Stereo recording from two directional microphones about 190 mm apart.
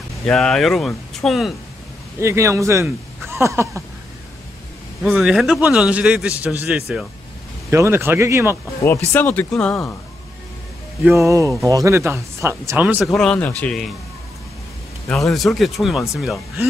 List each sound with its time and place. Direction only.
0.2 s a man's voice: 5° left (ahead or behind)
2.1 s speech: 15° right (ahead or behind)
5.0 s a man's voice: centre (ahead or behind)
8.8 s speech: 10° left (ahead or behind)
11.1 s a man's voice: 15° right (ahead or behind); by 13.9 s 5° left (ahead or behind)
15.0 s a man's voice: centre (ahead or behind)